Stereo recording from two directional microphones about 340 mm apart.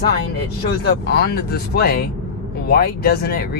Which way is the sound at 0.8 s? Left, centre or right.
Left.